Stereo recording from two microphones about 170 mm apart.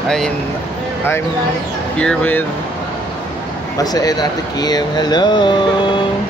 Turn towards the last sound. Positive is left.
turn(degrees=25)  # may be behind; listen again after turning